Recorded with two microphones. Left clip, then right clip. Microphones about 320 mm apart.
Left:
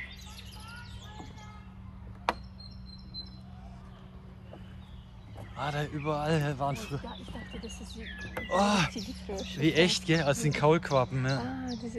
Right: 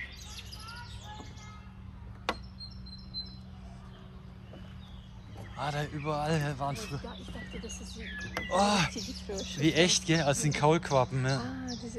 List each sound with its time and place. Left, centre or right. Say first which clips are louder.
5.6 s speech: left 1 dB; centre
8.4 s speech: even; centre
9.3 s speech: left 1 dB; left
9.6 s speech: even; centre
11.4 s bird: left 2 dB; left